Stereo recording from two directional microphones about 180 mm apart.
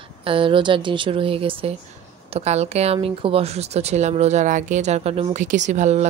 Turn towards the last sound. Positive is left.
turn(degrees=-40)  # may be behind; listen again after turning